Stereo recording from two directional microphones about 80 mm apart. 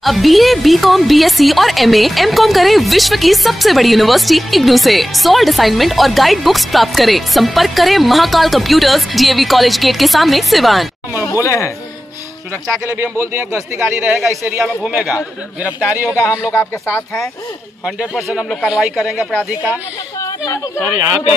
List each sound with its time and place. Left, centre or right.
0.0 s speech: centre
11.4 s speech: left
13.4 s speech: right
14.0 s speech: centre
15.9 s speech: right
16.2 s speech: left
17.8 s speech: centre
20.2 s a sound: left